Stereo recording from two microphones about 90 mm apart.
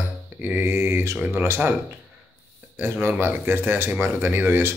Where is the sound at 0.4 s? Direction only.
20° right (ahead or behind).